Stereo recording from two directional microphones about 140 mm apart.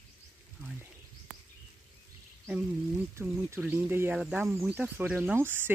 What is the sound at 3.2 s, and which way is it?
Speech, 20° right (ahead or behind).